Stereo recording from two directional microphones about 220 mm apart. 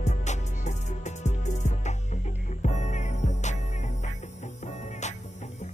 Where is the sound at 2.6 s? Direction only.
30° left (ahead or behind).